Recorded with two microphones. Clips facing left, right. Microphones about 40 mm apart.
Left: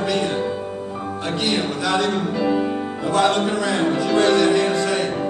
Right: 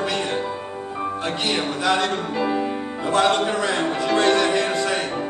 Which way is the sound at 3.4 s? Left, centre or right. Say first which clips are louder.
Left 1 dB; centre.